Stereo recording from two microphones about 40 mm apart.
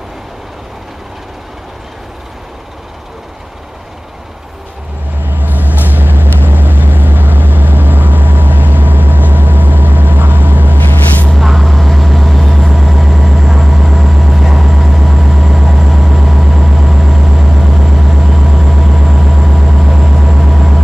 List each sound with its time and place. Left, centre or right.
5.2 s vehicle: right
11.2 s vehicle: centre